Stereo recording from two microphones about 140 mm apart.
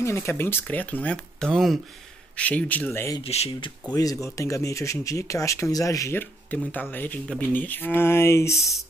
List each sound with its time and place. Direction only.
0.0 s speech: 20° left (ahead or behind)
3.3 s speech: 45° left (ahead or behind)
3.9 s speech: 25° left (ahead or behind)
8.5 s speech: centre (ahead or behind)